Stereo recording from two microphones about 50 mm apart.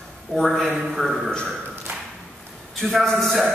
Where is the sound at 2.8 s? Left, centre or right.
Centre.